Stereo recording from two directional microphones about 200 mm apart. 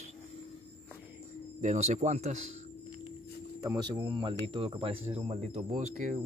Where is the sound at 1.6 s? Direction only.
35° right (ahead or behind).